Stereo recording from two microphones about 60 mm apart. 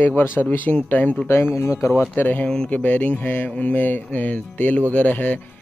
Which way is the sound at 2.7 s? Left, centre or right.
Left.